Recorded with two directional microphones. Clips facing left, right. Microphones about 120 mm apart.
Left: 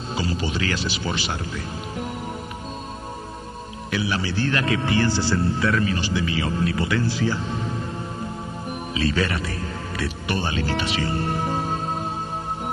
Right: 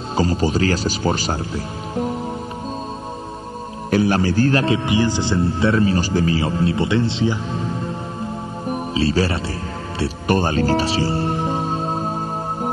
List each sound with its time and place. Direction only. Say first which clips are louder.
0.1 s speech: right 8 dB; 45° right (ahead or behind)
3.9 s speech: right 8 dB; 45° right (ahead or behind)
4.7 s speech: right 3 dB; 15° right (ahead or behind)
8.9 s speech: right 4 dB; 30° right (ahead or behind)